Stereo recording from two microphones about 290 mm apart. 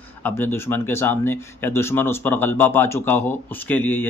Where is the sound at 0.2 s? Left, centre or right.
Centre.